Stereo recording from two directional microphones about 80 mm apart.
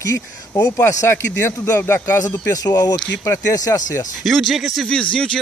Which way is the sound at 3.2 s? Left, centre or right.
Left.